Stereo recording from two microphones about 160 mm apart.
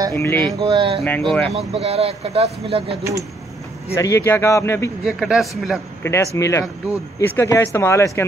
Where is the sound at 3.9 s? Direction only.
20° left (ahead or behind).